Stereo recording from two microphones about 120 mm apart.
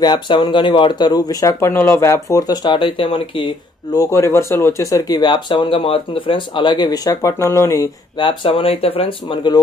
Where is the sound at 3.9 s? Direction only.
25° left (ahead or behind).